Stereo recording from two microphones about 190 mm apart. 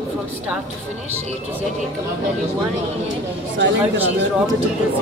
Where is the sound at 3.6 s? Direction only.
70° right (ahead or behind).